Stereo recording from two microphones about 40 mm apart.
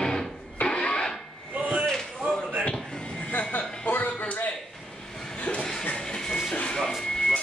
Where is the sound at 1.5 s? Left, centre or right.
Right.